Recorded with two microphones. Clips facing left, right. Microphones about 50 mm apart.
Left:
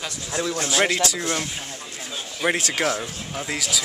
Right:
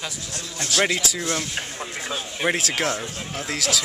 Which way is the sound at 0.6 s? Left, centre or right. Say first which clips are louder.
Even; centre.